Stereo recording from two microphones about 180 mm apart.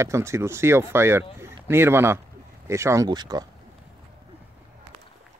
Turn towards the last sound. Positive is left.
turn(degrees=-20)  # may be behind; listen again after turning